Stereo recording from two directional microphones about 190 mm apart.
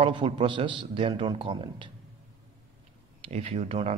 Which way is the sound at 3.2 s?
30° right (ahead or behind).